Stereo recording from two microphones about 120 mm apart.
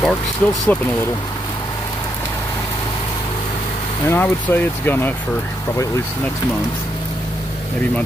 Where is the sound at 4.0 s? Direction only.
20° left (ahead or behind).